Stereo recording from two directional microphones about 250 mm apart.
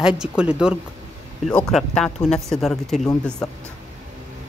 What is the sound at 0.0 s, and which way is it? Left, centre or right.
Speech, centre.